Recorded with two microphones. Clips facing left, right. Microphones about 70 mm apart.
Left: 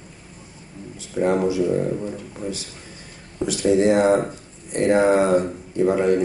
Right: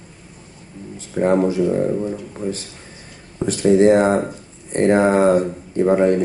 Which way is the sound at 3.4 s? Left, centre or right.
Right.